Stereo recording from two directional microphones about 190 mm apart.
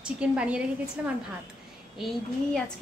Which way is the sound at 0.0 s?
5° right (ahead or behind).